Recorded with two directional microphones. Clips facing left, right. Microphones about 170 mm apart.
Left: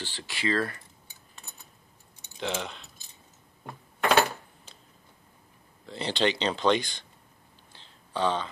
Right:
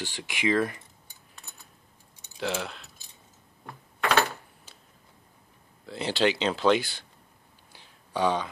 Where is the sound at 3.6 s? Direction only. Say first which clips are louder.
Left 2 dB; 20° left (ahead or behind).